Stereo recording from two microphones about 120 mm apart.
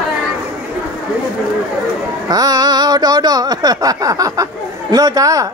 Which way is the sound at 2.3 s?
35° right (ahead or behind).